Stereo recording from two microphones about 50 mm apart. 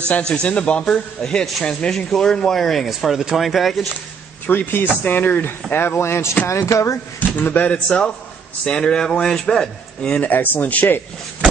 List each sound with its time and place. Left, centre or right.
0.3 s a man's voice: left; by 2.9 s centre
3.0 s speech: centre
4.5 s speech: left
6.4 s speech: left
7.2 s speech: left
8.6 s a man's voice: centre
10.2 s speech: left